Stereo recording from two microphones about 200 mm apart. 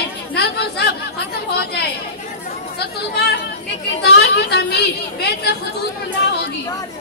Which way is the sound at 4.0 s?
55° left (ahead or behind).